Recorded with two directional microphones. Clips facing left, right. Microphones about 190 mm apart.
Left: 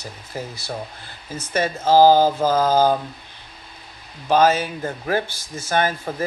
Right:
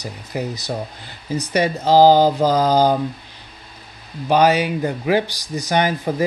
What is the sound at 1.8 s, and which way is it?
Speech, 15° right (ahead or behind).